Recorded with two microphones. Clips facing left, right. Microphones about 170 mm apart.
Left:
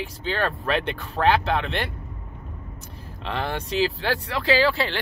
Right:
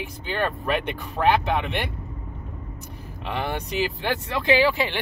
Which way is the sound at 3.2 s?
15° right (ahead or behind).